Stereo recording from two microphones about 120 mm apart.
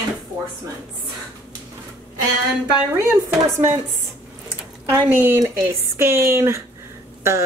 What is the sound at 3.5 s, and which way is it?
Speech, 20° right (ahead or behind).